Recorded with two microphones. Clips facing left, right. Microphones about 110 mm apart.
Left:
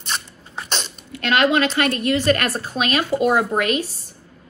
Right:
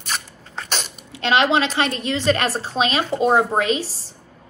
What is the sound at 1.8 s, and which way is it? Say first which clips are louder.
Speech: left 2 dB; 50° left (ahead or behind).